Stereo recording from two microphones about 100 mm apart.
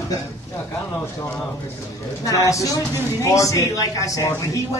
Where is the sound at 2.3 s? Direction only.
35° left (ahead or behind).